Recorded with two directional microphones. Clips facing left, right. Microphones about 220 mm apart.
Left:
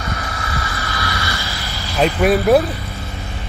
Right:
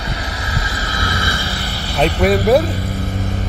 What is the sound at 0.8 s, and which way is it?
Vehicle, 25° right (ahead or behind).